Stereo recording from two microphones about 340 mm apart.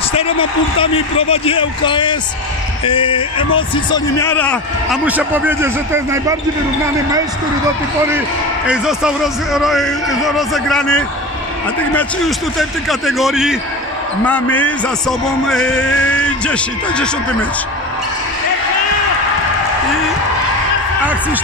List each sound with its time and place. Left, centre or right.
0.1 s a man's voice: centre
8.6 s a man's voice: centre
21.0 s a man's voice: centre